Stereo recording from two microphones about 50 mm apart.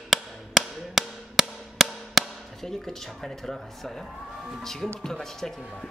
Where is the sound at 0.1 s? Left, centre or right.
Centre.